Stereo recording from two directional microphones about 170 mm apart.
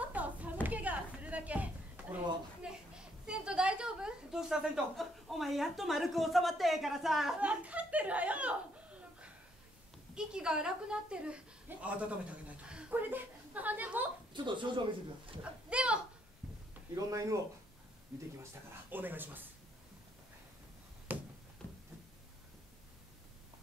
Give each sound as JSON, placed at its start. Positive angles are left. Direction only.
{"t": 0.1, "sound": "a sound", "side_deg": -10}
{"t": 2.6, "sound": "a woman's voice", "side_deg": -5}
{"t": 14.3, "sound": "speech", "side_deg": -30}
{"t": 15.7, "sound": "a woman's voice", "side_deg": -5}
{"t": 16.9, "sound": "speech", "side_deg": -20}
{"t": 18.4, "sound": "a woman's voice", "side_deg": -15}
{"t": 21.1, "sound": "a sound", "side_deg": -10}